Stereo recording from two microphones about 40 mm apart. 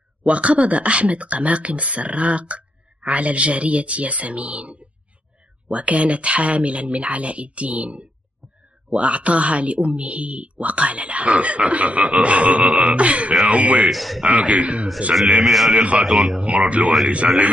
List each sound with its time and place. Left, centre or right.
0.2 s speech: right
13.8 s speech: centre
14.2 s speech: right
15.4 s speech: centre
15.7 s speech: right
16.0 s speech: centre
16.3 s speech: right